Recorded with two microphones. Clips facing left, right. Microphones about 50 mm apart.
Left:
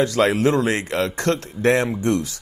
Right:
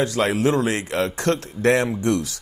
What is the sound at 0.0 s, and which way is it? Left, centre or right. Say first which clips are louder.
A man's voice: left 2 dB; left.